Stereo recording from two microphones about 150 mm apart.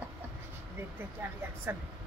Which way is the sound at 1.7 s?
15° right (ahead or behind).